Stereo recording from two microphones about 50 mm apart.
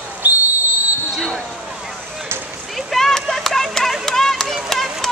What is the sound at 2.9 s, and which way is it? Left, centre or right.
Run, centre.